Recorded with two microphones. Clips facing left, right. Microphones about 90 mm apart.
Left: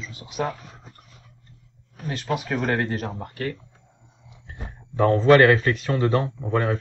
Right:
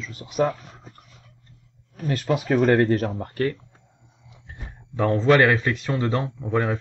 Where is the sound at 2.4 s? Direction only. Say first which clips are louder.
Right 10 dB; 50° right (ahead or behind).